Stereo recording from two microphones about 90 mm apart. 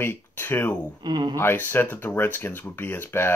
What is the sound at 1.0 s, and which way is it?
Speech, 55° right (ahead or behind).